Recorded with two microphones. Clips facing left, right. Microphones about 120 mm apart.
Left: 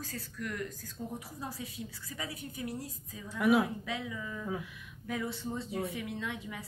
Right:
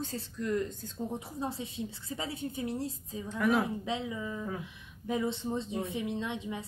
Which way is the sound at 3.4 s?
5° left (ahead or behind).